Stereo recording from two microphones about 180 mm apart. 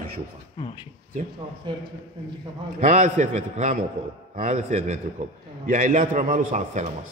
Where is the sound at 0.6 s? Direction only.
25° left (ahead or behind).